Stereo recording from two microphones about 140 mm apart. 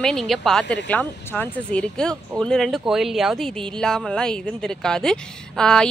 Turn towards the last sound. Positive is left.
turn(degrees=5)  # may be behind; listen again after turning